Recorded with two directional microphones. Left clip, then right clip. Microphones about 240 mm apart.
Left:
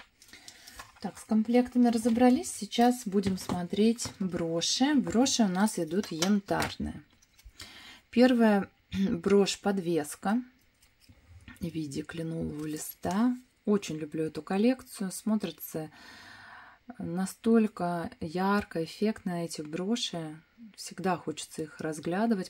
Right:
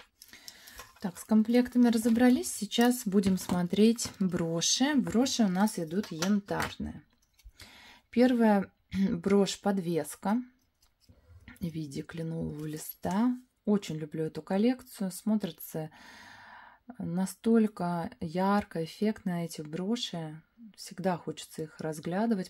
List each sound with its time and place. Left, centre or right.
1.0 s speech: centre
11.4 s speech: centre